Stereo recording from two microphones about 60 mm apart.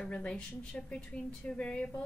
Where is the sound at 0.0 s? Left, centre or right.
Centre.